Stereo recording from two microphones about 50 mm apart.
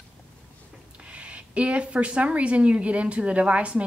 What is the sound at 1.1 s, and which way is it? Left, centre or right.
A woman's voice, right.